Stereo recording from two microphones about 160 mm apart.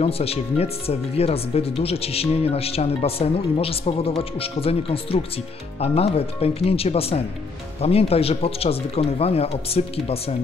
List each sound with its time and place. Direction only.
0.0 s speech: 40° left (ahead or behind)